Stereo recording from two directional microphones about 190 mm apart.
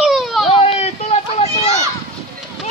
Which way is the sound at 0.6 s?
35° left (ahead or behind).